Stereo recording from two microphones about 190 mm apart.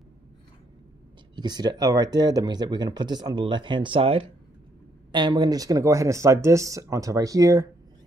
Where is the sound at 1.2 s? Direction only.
20° right (ahead or behind).